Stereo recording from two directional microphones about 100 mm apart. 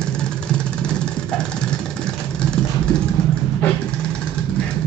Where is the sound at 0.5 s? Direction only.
10° left (ahead or behind).